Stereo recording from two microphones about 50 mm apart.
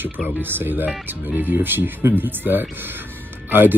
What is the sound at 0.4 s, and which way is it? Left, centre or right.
Speech, right.